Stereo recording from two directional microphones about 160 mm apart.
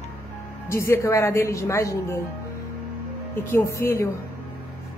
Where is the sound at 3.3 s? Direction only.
10° left (ahead or behind).